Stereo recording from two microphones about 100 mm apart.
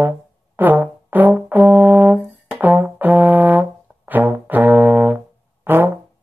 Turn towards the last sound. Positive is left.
turn(degrees=-20)  # may be behind; listen again after turning